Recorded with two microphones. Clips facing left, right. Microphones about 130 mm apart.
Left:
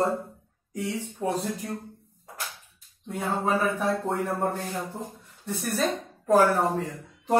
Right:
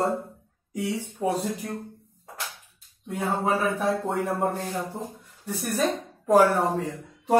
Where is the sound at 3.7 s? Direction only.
15° right (ahead or behind).